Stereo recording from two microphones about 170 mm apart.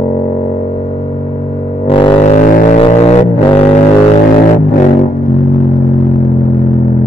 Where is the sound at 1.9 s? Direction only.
30° left (ahead or behind).